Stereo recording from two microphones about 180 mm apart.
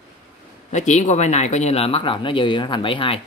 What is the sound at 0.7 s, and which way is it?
Speech, 40° left (ahead or behind).